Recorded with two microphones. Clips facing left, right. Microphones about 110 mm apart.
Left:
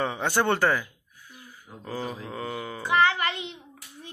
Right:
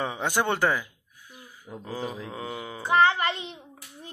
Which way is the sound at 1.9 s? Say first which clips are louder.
Left 1 dB; 10° right (ahead or behind).